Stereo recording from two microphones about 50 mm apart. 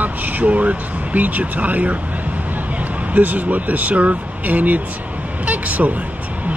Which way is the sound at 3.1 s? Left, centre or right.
Right.